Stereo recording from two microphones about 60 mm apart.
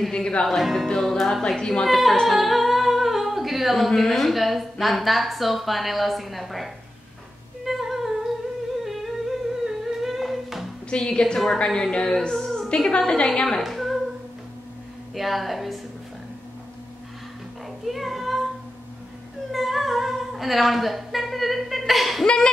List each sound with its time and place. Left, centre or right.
0.1 s a woman's voice: centre
0.5 s speech: centre
2.2 s speech: centre
7.6 s music: centre
8.8 s humming: centre
11.0 s a woman's voice: centre
13.6 s a sound: centre
15.1 s speech: centre
17.8 s a sound: centre
19.5 s humming: centre
22.2 s a woman's voice: centre